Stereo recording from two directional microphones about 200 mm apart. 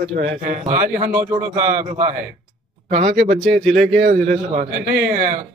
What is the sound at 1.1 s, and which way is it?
Speech, 10° right (ahead or behind).